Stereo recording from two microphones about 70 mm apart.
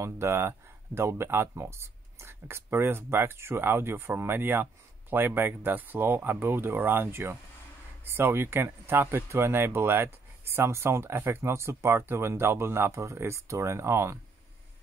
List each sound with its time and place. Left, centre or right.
0.0 s speech: right